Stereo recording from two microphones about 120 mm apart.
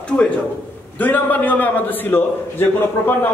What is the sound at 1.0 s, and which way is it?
A man's voice, 15° left (ahead or behind).